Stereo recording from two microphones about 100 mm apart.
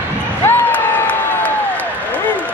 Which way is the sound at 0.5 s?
15° left (ahead or behind).